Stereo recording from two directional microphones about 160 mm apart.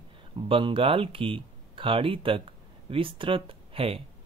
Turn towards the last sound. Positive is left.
turn(degrees=-35)  # may be behind; listen again after turning